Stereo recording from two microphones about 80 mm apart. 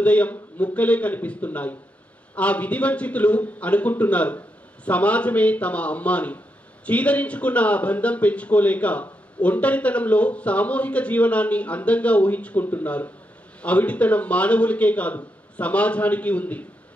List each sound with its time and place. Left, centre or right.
0.0 s speech: centre